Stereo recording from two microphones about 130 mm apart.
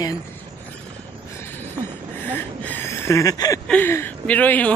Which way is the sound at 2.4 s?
20° left (ahead or behind).